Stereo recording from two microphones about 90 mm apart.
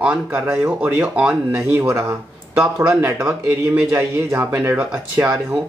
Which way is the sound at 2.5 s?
15° right (ahead or behind).